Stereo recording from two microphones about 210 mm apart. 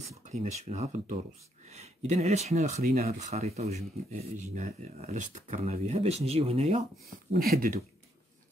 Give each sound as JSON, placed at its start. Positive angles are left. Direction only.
{"t": 0.2, "sound": "speech", "side_deg": -35}
{"t": 7.3, "sound": "speech", "side_deg": -45}